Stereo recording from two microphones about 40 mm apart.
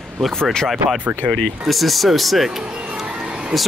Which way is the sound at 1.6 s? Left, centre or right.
Centre.